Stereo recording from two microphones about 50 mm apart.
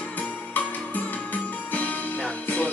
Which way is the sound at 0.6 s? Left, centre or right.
Left.